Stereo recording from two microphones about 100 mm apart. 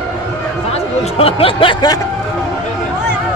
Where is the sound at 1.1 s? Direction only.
70° left (ahead or behind); by 1.9 s 50° left (ahead or behind).